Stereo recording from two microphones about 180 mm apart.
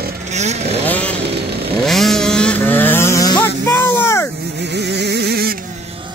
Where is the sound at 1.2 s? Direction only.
65° right (ahead or behind).